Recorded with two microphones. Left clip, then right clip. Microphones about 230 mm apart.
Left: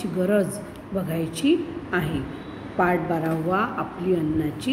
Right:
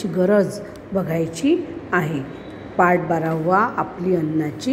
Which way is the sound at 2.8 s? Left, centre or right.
Centre.